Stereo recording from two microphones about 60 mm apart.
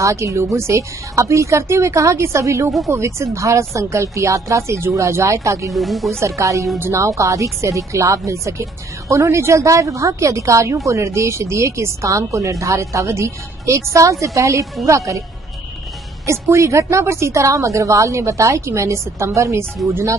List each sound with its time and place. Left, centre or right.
0.0 s a woman's voice: right
5.7 s speech: centre
6.1 s a woman's voice: right
16.3 s a woman's voice: right